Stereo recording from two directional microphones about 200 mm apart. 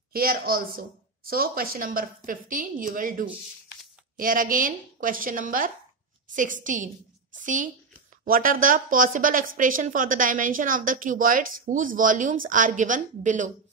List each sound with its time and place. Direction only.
0.1 s a woman's voice: 45° right (ahead or behind)